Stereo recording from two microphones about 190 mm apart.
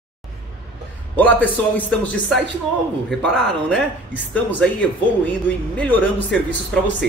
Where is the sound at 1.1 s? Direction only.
10° left (ahead or behind).